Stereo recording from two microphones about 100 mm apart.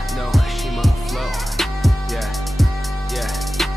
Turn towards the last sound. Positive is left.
turn(degrees=0)  # may be behind; listen again after turning